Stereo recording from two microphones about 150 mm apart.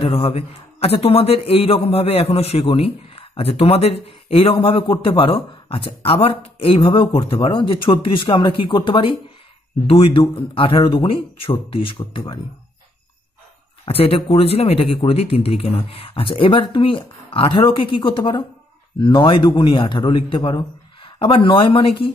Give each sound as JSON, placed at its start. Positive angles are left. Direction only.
{"t": 0.0, "sound": "speech", "side_deg": 40}
{"t": 13.8, "sound": "speech", "side_deg": 40}